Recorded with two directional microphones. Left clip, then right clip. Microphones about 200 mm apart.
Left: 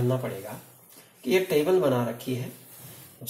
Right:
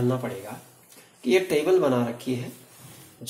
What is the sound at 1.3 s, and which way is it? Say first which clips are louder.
Speech: right 1 dB; 40° right (ahead or behind).